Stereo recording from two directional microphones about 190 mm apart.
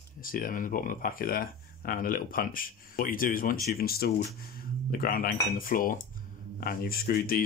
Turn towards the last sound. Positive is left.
turn(degrees=50)  # may be behind; listen again after turning